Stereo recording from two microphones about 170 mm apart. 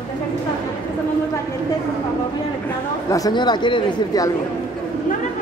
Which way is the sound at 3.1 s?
25° left (ahead or behind).